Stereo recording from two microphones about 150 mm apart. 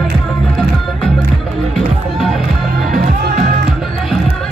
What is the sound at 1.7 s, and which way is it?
Music, centre (ahead or behind).